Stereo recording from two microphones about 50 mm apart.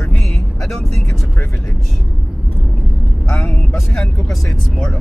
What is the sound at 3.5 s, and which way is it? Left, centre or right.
Speech, centre.